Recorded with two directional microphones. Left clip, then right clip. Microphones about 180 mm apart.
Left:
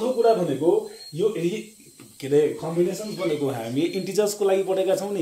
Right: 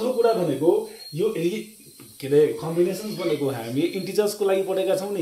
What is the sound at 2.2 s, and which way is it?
Speech, 20° left (ahead or behind).